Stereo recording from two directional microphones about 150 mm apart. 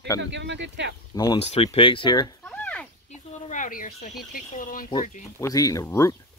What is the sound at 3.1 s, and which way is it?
Speech, 55° left (ahead or behind).